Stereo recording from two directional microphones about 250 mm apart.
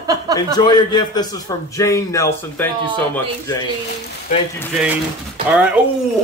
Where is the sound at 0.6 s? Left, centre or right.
Centre.